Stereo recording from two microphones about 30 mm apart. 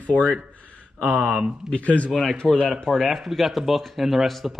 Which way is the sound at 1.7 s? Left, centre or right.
Left.